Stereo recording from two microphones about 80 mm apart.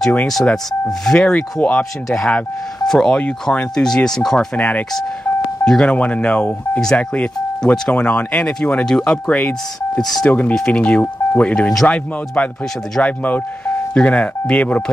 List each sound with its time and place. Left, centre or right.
0.8 s speech: centre
4.6 s speech: centre
11.7 s speech: centre
12.4 s speech: centre